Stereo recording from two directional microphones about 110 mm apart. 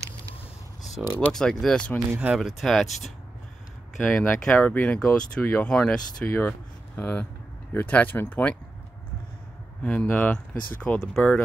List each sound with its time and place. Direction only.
1.0 s speech: 5° right (ahead or behind)
2.1 s speech: 5° right (ahead or behind)
4.0 s speech: 15° left (ahead or behind)
9.8 s speech: 15° left (ahead or behind)